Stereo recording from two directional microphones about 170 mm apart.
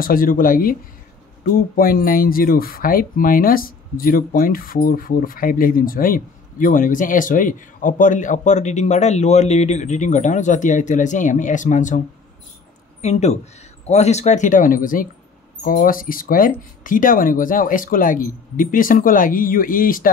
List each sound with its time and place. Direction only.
0.0 s speech: 55° left (ahead or behind)
13.0 s speech: 40° left (ahead or behind)